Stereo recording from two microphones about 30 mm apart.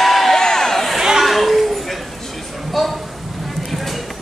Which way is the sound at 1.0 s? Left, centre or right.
Centre.